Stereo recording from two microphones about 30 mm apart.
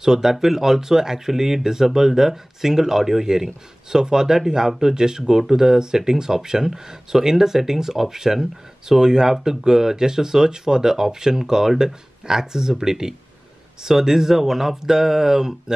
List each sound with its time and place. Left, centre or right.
0.0 s speech: centre